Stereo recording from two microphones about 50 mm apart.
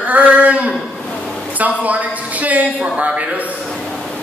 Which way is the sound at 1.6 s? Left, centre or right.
Right.